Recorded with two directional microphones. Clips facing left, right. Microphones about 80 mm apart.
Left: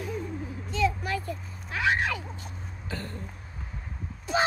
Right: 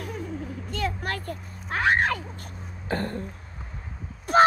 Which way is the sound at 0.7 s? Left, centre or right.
Right.